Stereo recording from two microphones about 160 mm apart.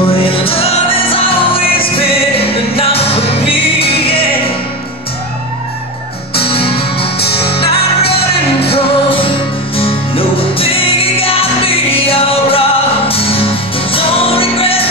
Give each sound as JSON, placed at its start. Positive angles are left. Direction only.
{"t": 0.1, "sound": "music", "side_deg": 35}
{"t": 6.3, "sound": "music", "side_deg": 35}
{"t": 7.6, "sound": "music", "side_deg": 90}
{"t": 8.7, "sound": "music", "side_deg": 35}